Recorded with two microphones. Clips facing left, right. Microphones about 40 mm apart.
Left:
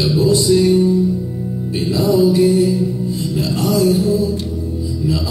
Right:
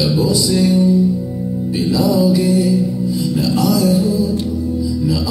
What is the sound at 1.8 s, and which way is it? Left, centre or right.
Music, left.